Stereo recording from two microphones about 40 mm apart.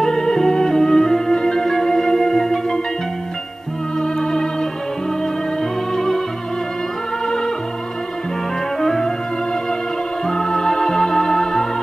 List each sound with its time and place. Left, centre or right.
0.0 s music: centre
4.0 s organ: centre
5.9 s organ: centre
7.2 s music: centre
8.7 s music: centre
10.2 s music: centre